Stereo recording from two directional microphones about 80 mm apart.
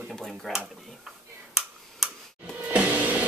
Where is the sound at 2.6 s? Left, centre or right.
Centre.